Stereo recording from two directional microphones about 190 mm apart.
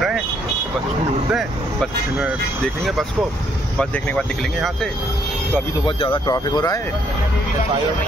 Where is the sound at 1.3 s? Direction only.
Centre (ahead or behind).